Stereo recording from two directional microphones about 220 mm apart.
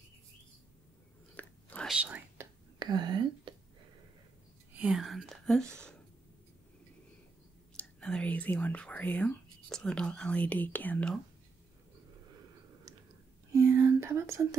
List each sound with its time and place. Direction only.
1.3 s whispering: 5° left (ahead or behind)
2.8 s whispering: 20° right (ahead or behind)
4.7 s speech: 5° right (ahead or behind)
7.7 s speech: 5° left (ahead or behind)
13.5 s whispering: 10° right (ahead or behind)